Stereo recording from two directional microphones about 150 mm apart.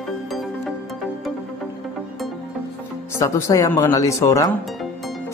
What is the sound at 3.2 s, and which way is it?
Speech, 20° left (ahead or behind).